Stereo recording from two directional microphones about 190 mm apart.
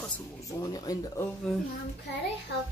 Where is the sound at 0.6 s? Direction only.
20° left (ahead or behind).